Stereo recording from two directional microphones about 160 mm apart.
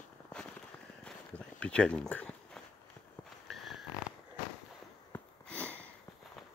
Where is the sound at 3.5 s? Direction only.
Centre (ahead or behind).